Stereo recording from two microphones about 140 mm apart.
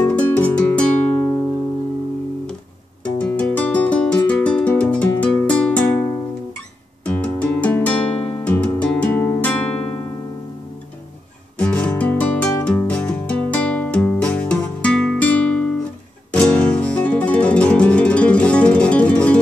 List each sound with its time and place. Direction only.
0.0 s music: 10° left (ahead or behind)
3.2 s music: 10° left (ahead or behind)
7.1 s music: 10° left (ahead or behind)
11.5 s music: 10° left (ahead or behind)